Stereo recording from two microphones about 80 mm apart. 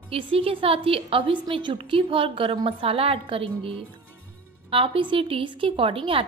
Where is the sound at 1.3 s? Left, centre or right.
Right.